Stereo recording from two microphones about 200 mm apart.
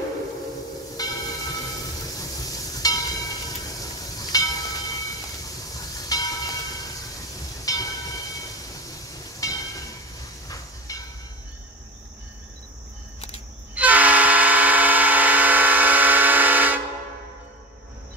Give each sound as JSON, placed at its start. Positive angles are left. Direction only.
{"t": 0.9, "sound": "train", "side_deg": 20}
{"t": 10.9, "sound": "train", "side_deg": 15}
{"t": 13.7, "sound": "vehicle", "side_deg": -10}